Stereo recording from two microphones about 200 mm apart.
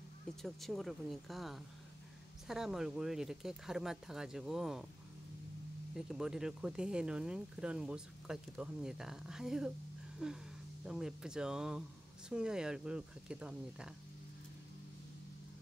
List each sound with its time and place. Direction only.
0.4 s speech: centre (ahead or behind)
5.9 s speech: 5° right (ahead or behind)
10.1 s a sound: 5° right (ahead or behind)
10.9 s speech: 5° right (ahead or behind)